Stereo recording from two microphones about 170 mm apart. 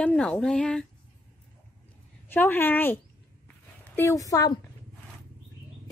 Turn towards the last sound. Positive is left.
turn(degrees=20)  # may be behind; listen again after turning